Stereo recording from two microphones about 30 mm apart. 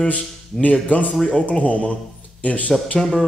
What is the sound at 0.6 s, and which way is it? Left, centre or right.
Speech, left.